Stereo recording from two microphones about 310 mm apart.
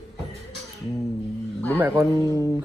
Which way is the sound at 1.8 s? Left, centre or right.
Centre.